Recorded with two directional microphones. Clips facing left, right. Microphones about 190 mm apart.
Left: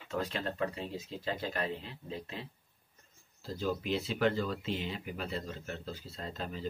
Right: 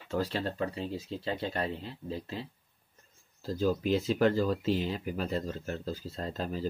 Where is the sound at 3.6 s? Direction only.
40° right (ahead or behind).